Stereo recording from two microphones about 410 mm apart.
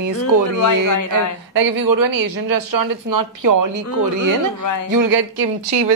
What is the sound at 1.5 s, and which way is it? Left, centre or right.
A woman's voice, right.